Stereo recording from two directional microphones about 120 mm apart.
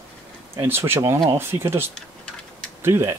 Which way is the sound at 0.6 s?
20° right (ahead or behind).